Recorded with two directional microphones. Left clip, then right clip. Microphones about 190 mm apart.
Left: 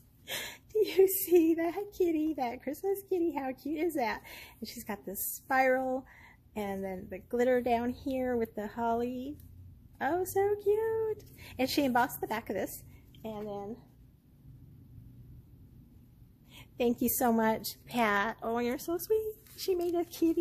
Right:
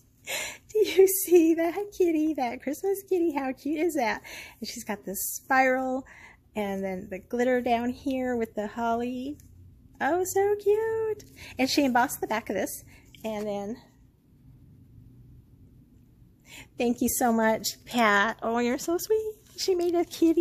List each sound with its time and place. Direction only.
0.2 s a woman's voice: 20° right (ahead or behind)
13.5 s speech: 35° right (ahead or behind)
16.7 s a woman's voice: 15° right (ahead or behind)